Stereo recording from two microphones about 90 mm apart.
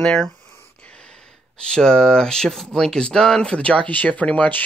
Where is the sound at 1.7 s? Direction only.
10° left (ahead or behind).